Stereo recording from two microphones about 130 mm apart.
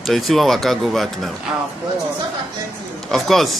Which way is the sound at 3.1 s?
Centre (ahead or behind).